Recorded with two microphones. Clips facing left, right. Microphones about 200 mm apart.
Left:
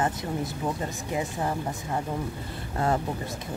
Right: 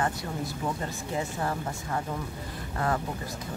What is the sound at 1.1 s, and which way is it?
Speech, 20° left (ahead or behind).